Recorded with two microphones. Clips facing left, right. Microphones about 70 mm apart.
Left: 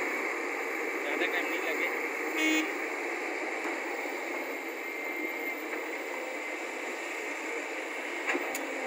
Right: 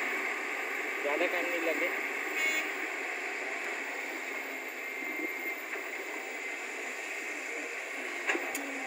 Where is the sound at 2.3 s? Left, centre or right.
Left.